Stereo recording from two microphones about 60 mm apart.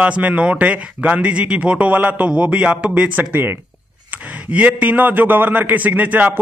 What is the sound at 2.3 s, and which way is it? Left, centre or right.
Speech, centre.